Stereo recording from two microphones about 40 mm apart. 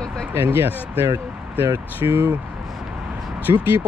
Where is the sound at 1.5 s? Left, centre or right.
Right.